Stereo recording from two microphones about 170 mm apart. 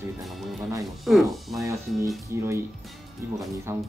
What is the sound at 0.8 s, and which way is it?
Speech, centre (ahead or behind).